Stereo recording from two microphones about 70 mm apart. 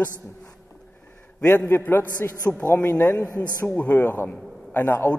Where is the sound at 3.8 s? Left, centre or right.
Left.